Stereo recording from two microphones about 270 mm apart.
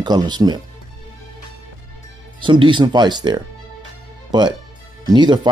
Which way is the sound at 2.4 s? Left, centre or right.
Centre.